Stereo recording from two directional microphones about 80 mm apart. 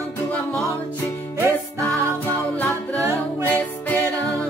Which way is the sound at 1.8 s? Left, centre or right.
Left.